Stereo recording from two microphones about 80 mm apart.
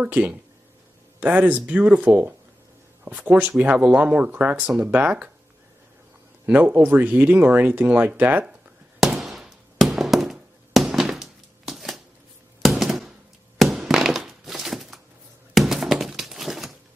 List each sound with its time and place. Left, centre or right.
0.0 s speech: centre
6.4 s speech: right
9.0 s fireworks: centre
12.6 s a sound: centre
13.6 s thunk: centre
15.5 s a sound: centre